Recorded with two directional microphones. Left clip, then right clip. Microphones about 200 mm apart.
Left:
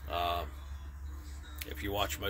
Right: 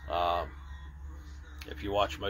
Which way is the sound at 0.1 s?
10° left (ahead or behind).